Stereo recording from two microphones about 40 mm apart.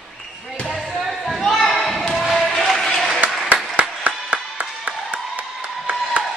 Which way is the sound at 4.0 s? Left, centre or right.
Right.